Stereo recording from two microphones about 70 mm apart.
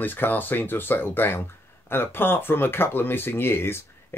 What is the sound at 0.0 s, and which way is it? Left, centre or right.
Speech, left.